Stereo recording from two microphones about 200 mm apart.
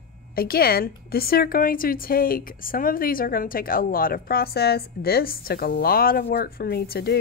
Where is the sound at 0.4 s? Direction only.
50° left (ahead or behind).